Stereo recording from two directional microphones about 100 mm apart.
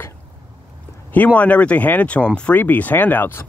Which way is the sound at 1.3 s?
15° left (ahead or behind).